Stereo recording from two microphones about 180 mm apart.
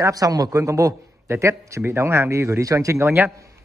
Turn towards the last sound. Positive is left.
turn(degrees=-15)  # may be behind; listen again after turning